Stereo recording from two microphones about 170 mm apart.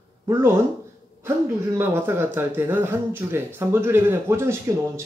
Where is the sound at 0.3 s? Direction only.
15° right (ahead or behind).